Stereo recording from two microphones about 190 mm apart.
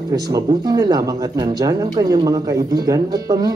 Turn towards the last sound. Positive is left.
turn(degrees=-20)  # may be behind; listen again after turning